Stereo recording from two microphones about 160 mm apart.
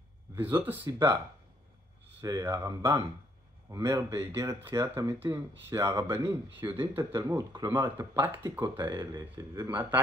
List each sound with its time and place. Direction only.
0.4 s speech: 15° right (ahead or behind)
2.2 s speech: 20° right (ahead or behind)
8.0 s speech: 15° right (ahead or behind)
8.5 s speech: 25° right (ahead or behind)